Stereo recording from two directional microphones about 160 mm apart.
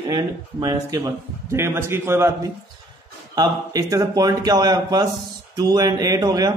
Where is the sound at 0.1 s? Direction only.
25° right (ahead or behind).